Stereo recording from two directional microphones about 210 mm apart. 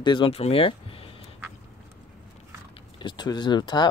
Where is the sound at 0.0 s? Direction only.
25° left (ahead or behind).